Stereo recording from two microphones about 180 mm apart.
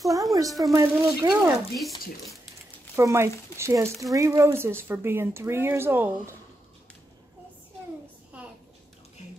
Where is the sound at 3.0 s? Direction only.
15° right (ahead or behind).